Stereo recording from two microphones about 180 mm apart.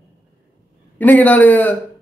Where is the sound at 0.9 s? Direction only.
10° left (ahead or behind).